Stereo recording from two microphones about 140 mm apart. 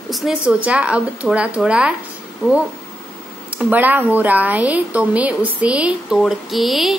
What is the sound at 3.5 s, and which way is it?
A child's voice, 10° right (ahead or behind).